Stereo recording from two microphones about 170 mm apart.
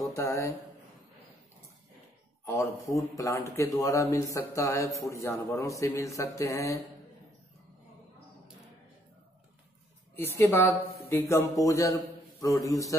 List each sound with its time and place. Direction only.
0.1 s a man's voice: 15° left (ahead or behind)
2.4 s a man's voice: 15° left (ahead or behind)
10.1 s a man's voice: 15° left (ahead or behind)